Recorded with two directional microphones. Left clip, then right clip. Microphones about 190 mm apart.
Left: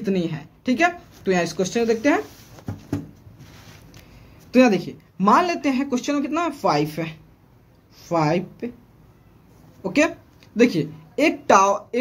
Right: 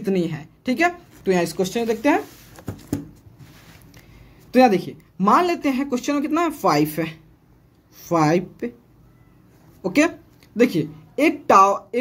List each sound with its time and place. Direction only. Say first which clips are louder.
0.0 s a woman's voice: right 2 dB; 10° right (ahead or behind)
4.5 s a woman's voice: right 2 dB; 15° right (ahead or behind)
9.8 s speech: right 1 dB; 25° right (ahead or behind)
10.5 s speech: even; 10° right (ahead or behind)